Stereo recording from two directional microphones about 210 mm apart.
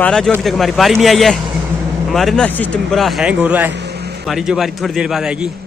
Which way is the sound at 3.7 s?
50° right (ahead or behind).